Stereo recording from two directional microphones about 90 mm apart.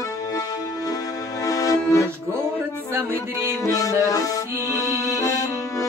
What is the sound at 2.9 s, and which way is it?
Music, 25° right (ahead or behind).